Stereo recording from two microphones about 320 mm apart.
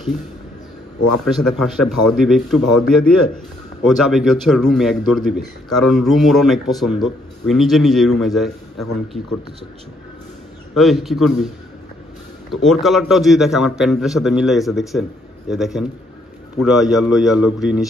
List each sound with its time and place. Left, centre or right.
1.2 s a man's voice: centre
10.7 s a man's voice: centre
12.6 s a man's voice: centre